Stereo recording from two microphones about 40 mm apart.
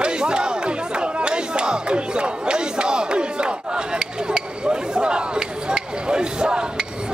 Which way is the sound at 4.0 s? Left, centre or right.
Right.